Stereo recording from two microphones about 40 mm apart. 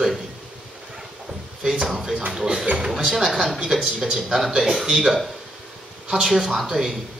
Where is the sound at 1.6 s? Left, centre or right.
Centre.